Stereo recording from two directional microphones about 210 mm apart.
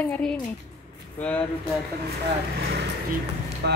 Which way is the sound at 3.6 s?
50° right (ahead or behind).